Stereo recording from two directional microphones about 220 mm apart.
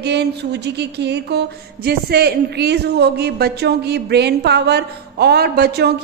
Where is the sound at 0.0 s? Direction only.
50° right (ahead or behind).